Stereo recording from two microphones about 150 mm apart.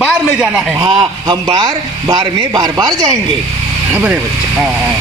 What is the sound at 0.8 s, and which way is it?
Speech, 30° right (ahead or behind).